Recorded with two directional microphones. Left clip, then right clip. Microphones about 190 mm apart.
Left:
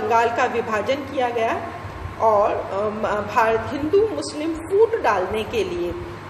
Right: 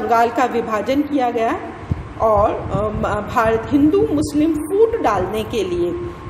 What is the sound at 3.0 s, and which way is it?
Speech, 45° right (ahead or behind).